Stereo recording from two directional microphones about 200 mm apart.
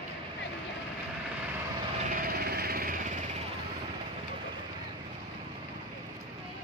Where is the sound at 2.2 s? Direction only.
50° right (ahead or behind).